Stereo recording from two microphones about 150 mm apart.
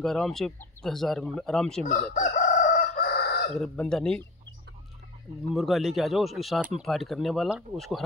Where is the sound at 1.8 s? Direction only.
60° left (ahead or behind); by 3.4 s 90° left.